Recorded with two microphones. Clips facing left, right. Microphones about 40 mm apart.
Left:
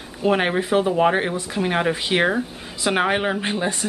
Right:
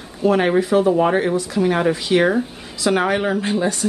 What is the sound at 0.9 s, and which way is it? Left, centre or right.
Speech, centre.